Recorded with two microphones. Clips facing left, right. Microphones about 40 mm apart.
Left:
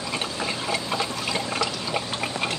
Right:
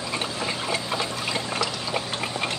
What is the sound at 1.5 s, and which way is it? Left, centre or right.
Water, centre.